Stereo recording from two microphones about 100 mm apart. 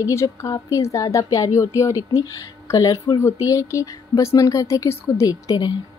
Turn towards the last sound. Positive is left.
turn(degrees=40)  # may be behind; listen again after turning